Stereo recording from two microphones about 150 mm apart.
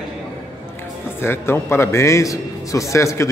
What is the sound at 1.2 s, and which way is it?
A man's voice, 15° left (ahead or behind).